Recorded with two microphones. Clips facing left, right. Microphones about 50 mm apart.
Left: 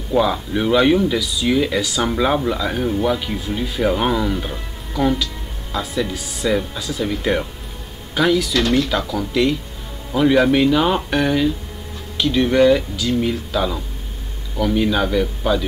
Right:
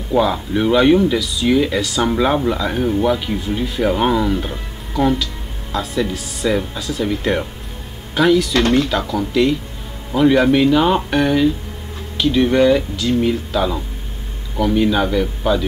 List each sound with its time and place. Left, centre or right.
0.1 s speech: centre
8.5 s speech: right
8.8 s speech: centre